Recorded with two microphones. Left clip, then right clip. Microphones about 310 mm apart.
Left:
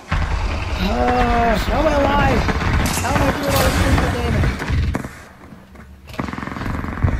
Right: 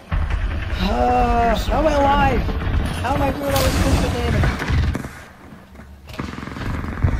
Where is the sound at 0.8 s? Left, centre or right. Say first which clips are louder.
Even; centre.